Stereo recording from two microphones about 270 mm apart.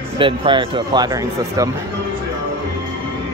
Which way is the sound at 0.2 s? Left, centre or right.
Centre.